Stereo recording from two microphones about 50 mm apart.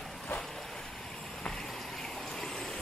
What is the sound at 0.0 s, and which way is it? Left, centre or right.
Vehicle, centre.